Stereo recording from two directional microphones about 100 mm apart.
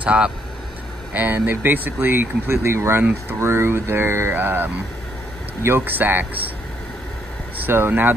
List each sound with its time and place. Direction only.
0.0 s speech: 10° right (ahead or behind)
7.5 s speech: 20° right (ahead or behind)